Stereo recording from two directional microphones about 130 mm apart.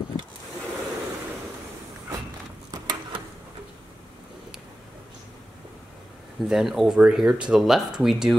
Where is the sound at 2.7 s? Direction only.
30° right (ahead or behind).